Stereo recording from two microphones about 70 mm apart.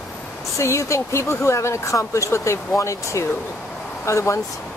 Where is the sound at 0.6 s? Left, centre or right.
Left.